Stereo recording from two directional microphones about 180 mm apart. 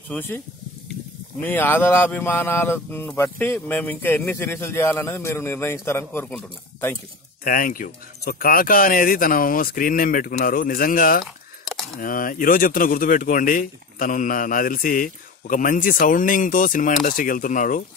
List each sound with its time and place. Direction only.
0.1 s speech: 10° left (ahead or behind)
1.4 s speech: 10° left (ahead or behind)
7.4 s speech: 50° left (ahead or behind)